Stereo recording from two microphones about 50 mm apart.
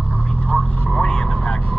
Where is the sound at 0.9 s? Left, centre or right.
Left.